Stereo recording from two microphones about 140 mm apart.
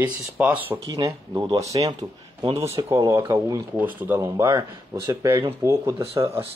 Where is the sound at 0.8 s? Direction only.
30° right (ahead or behind).